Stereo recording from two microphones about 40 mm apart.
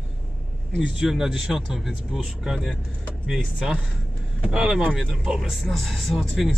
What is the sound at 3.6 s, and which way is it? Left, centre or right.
Speech, centre.